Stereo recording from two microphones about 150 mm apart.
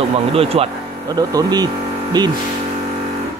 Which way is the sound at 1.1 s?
25° right (ahead or behind).